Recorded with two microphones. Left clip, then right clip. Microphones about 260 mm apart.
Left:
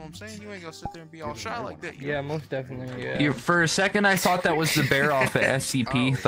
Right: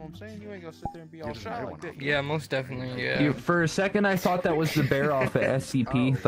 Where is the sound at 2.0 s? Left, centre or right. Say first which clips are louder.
Right 3 dB; right.